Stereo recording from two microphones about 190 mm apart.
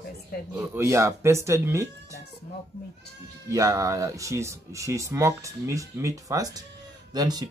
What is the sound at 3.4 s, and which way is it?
Speech, 15° right (ahead or behind).